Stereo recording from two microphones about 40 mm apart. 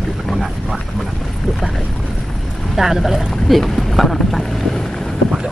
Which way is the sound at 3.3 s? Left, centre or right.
Centre.